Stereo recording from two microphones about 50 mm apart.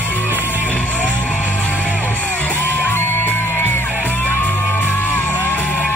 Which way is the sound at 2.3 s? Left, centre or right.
Left.